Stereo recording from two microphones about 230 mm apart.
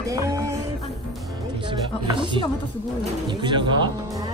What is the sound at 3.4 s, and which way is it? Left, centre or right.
Speech, right.